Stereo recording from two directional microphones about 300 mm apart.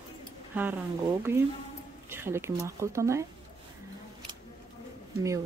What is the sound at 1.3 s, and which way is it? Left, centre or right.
Speech, centre.